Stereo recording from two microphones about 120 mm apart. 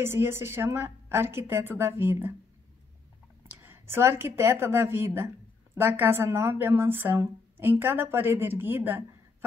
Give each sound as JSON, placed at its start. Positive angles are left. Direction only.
{"t": 0.0, "sound": "a woman's voice", "side_deg": -20}
{"t": 3.6, "sound": "a woman's voice", "side_deg": -20}